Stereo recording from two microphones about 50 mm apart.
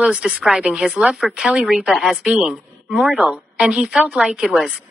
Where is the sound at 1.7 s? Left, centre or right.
Centre.